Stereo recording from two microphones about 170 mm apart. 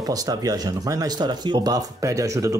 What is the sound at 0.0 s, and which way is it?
Speech, 20° right (ahead or behind).